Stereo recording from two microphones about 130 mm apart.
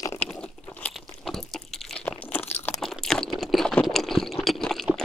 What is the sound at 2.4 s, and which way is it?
Crunch, 55° left (ahead or behind).